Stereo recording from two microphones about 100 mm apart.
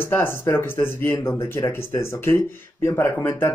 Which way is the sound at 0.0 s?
20° left (ahead or behind).